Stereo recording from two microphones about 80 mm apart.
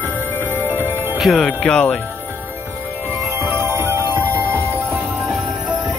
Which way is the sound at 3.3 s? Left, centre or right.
Right.